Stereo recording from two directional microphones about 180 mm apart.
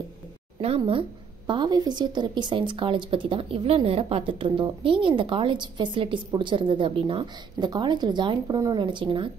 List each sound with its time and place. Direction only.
0.6 s a woman's voice: 35° right (ahead or behind)